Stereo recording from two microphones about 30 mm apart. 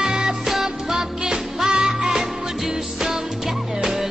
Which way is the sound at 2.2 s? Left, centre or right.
Centre.